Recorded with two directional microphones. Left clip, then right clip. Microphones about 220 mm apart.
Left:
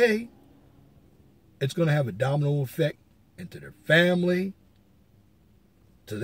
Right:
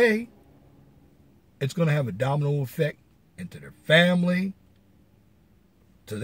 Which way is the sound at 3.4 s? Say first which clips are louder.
Even; 10° right (ahead or behind).